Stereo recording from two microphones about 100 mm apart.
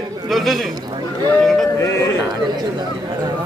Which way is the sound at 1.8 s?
30° left (ahead or behind).